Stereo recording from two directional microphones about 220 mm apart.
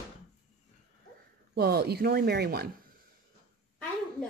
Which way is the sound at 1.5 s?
45° right (ahead or behind).